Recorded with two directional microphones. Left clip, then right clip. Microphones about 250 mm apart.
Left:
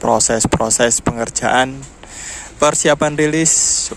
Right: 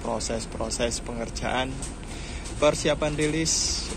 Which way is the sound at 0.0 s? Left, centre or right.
Left.